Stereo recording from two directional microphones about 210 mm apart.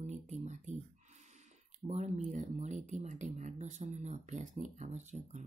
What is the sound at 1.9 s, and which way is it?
Speech, 35° right (ahead or behind).